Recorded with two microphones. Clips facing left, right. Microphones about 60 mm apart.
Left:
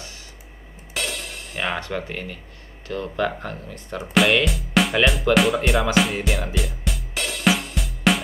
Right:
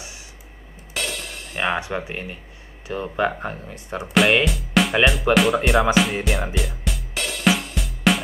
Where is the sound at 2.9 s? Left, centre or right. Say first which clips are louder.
Right 2 dB; centre.